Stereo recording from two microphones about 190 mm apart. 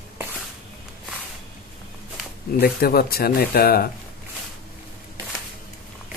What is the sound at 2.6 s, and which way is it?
Speech, 55° left (ahead or behind).